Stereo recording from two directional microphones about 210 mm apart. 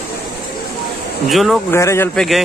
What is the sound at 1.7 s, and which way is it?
Speech, 15° left (ahead or behind).